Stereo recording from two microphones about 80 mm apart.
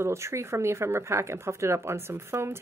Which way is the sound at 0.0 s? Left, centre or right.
Right.